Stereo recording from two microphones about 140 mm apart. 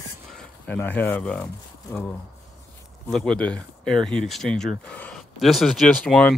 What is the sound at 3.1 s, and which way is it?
Speech, 5° left (ahead or behind).